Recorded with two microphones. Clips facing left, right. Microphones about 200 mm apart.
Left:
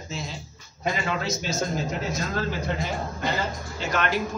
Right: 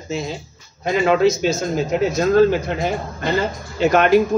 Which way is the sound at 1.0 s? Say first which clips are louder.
Right 13 dB; 90° right.